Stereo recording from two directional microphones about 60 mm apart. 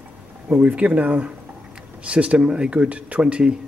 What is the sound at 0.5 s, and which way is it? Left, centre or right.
Speech, right.